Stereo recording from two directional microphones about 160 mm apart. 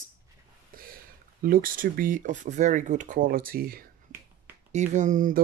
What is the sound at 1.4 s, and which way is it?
Speech, 60° right (ahead or behind).